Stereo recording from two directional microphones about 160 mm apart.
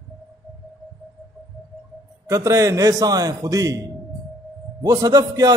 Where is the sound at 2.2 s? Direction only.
20° right (ahead or behind).